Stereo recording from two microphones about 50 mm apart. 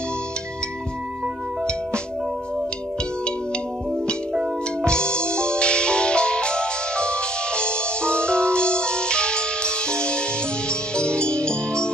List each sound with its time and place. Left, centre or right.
4.8 s music: centre